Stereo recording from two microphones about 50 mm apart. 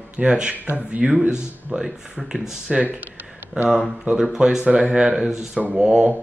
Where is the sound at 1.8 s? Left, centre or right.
Centre.